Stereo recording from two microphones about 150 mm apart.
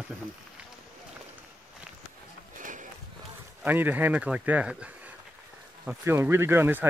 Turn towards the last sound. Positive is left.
turn(degrees=-15)  # may be behind; listen again after turning